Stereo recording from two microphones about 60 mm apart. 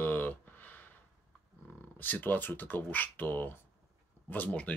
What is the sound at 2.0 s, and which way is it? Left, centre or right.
Speech, left.